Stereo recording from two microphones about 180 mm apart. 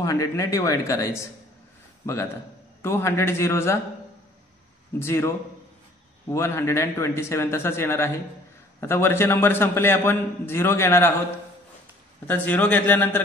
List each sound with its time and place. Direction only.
0.0 s a man's voice: 20° left (ahead or behind)
2.8 s a man's voice: 15° left (ahead or behind)
4.9 s a man's voice: 15° left (ahead or behind)
6.3 s a man's voice: 15° left (ahead or behind)
12.3 s a man's voice: 10° left (ahead or behind)